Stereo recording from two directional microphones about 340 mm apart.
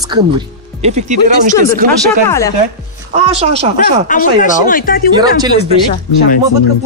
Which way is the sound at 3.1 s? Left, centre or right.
Centre.